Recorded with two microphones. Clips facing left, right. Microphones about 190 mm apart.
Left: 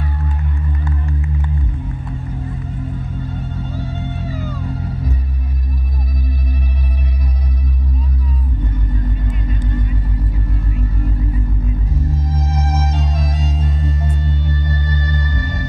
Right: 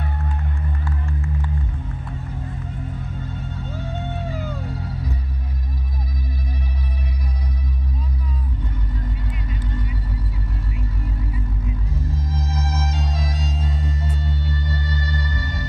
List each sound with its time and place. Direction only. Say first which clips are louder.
12.4 s music: left 5 dB; 55° left (ahead or behind)